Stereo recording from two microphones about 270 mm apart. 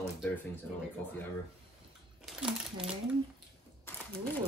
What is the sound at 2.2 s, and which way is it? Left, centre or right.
Crumpling, centre.